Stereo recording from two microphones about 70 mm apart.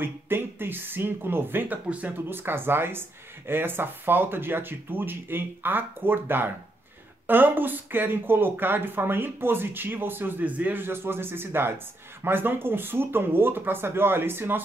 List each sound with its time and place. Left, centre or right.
0.0 s speech: right